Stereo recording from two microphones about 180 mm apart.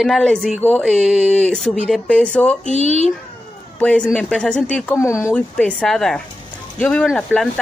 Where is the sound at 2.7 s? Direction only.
35° right (ahead or behind).